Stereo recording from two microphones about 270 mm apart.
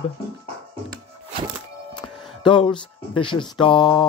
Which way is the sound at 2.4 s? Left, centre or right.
Centre.